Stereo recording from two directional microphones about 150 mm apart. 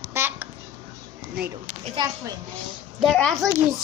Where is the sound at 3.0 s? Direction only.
5° left (ahead or behind).